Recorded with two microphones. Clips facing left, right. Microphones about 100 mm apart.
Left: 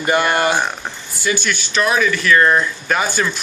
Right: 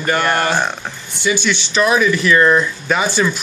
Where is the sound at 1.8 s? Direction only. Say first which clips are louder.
Right 3 dB; 15° right (ahead or behind).